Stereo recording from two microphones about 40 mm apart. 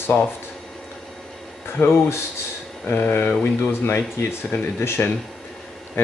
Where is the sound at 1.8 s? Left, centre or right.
Left.